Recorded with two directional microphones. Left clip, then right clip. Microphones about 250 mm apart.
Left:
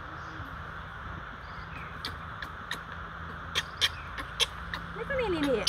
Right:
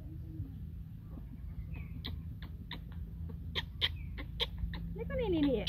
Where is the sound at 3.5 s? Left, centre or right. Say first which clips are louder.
Left 7 dB; centre.